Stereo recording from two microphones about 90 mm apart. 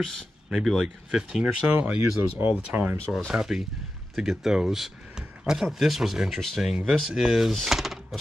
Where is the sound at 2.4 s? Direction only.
20° right (ahead or behind).